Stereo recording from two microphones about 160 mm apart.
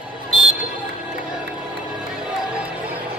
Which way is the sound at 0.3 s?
Centre (ahead or behind).